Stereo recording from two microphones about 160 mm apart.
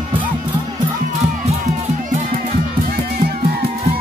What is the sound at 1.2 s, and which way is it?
Music, 45° right (ahead or behind).